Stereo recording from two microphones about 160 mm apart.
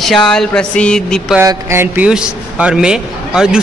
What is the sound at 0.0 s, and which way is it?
A man's voice, 5° left (ahead or behind).